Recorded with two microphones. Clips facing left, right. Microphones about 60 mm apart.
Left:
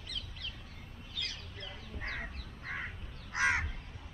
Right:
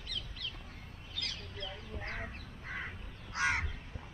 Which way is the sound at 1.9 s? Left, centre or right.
Right.